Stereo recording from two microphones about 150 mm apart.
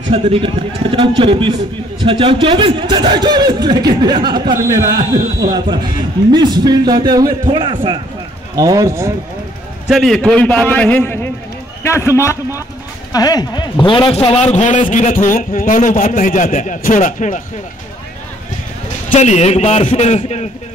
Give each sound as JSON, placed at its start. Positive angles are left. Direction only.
{"t": 0.1, "sound": "a man's voice", "side_deg": -35}
{"t": 9.8, "sound": "a man's voice", "side_deg": 0}
{"t": 19.0, "sound": "a man's voice", "side_deg": 50}